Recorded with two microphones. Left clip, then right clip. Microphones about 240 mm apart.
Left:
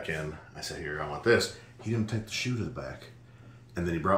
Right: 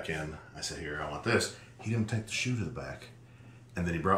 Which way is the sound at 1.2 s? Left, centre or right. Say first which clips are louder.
Left 6 dB; centre.